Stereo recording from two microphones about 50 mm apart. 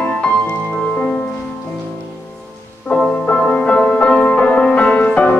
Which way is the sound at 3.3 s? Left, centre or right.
Left.